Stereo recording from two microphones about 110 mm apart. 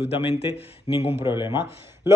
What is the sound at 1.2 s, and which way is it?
Speech, 45° left (ahead or behind).